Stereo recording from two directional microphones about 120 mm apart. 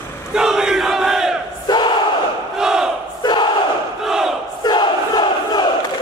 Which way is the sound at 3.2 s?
35° left (ahead or behind).